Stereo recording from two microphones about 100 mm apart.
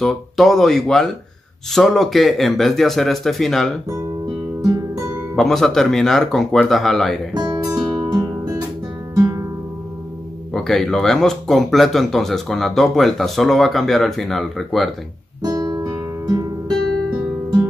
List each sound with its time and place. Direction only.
0.0 s speech: centre (ahead or behind)
5.3 s speech: 5° left (ahead or behind)
7.3 s music: 45° right (ahead or behind)
10.5 s speech: 5° left (ahead or behind)
15.4 s guitar: 40° right (ahead or behind)